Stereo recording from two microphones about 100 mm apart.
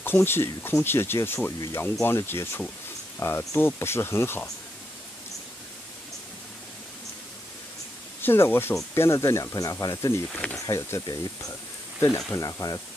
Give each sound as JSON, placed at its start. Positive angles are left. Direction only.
{"t": 0.0, "sound": "speech", "side_deg": 20}
{"t": 8.2, "sound": "speech", "side_deg": 20}
{"t": 10.2, "sound": "speech", "side_deg": 15}
{"t": 10.7, "sound": "speech", "side_deg": 30}
{"t": 12.4, "sound": "speech", "side_deg": 35}